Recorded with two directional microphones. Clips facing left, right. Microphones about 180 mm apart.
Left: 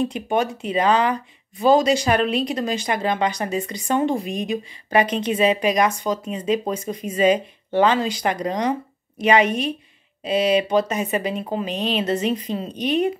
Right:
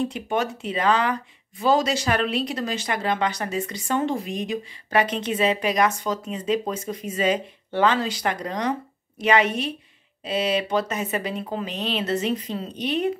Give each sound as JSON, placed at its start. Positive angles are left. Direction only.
{"t": 0.1, "sound": "speech", "side_deg": 15}